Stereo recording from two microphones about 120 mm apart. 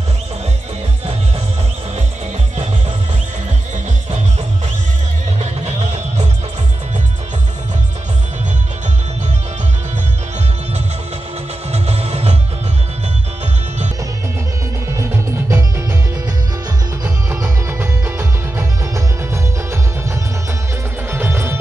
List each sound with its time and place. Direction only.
5.4 s music: 70° right (ahead or behind)
11.7 s music: 60° right (ahead or behind)
14.9 s music: 20° right (ahead or behind)
17.3 s music: 20° right (ahead or behind)
21.1 s music: 20° right (ahead or behind)